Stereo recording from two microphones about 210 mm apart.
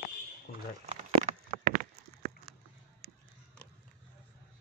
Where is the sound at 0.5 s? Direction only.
45° left (ahead or behind).